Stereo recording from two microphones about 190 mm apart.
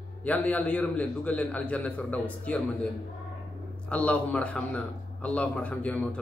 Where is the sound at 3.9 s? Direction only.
5° left (ahead or behind).